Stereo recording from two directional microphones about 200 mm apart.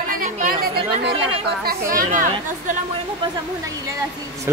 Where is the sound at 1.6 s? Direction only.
40° right (ahead or behind).